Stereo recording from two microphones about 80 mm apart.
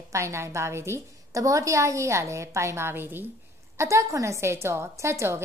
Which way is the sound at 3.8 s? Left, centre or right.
Right.